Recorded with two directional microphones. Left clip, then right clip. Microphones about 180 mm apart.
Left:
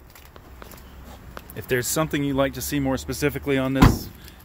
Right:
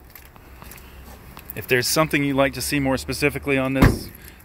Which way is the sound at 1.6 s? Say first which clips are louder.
Right 5 dB; centre (ahead or behind).